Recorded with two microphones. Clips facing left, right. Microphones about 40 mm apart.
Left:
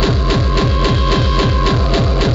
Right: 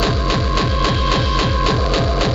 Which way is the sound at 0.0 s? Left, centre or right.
Left.